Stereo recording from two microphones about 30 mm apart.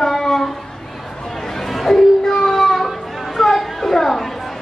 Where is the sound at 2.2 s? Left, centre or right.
Centre.